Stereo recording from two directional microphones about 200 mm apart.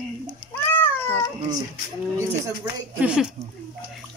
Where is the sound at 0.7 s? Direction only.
10° left (ahead or behind).